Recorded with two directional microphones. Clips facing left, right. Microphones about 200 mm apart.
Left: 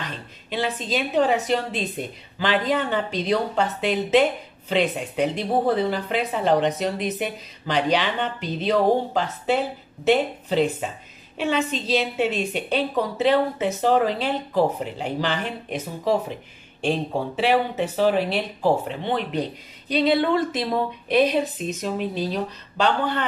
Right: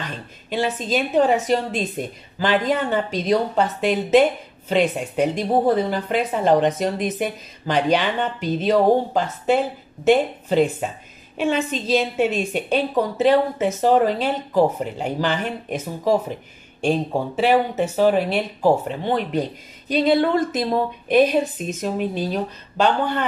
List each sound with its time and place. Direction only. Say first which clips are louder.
0.5 s a woman's voice: right 3 dB; 45° right (ahead or behind)
10.8 s a woman's voice: right 3 dB; 45° right (ahead or behind)